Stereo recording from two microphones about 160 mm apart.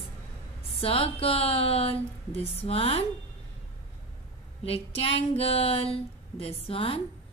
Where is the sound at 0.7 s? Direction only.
35° left (ahead or behind).